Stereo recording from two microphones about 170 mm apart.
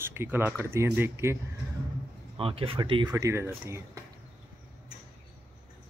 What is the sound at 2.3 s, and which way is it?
Speech, 30° right (ahead or behind).